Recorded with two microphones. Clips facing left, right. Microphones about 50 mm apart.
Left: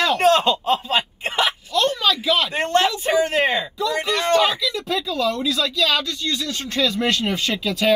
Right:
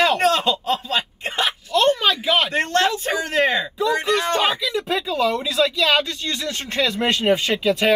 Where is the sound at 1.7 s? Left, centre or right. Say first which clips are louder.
Right 3 dB; right.